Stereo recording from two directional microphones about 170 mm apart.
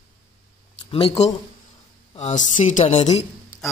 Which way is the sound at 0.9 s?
35° left (ahead or behind).